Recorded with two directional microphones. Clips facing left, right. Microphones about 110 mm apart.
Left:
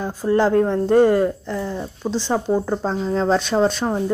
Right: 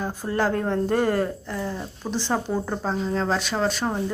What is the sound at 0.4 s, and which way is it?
Speech, 20° left (ahead or behind).